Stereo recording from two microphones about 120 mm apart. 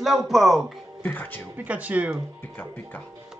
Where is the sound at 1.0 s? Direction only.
15° left (ahead or behind).